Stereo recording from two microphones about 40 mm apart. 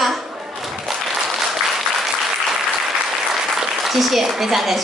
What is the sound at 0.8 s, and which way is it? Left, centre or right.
Applause, centre.